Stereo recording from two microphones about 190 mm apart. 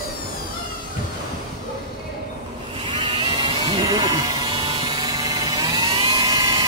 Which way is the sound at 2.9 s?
30° right (ahead or behind).